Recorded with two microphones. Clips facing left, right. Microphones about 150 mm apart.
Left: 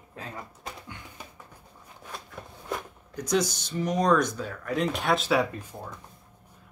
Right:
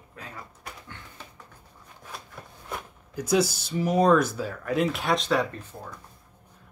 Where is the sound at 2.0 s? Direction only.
Centre (ahead or behind).